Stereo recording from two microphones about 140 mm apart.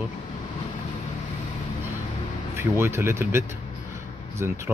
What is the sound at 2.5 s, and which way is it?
Speech, 20° right (ahead or behind).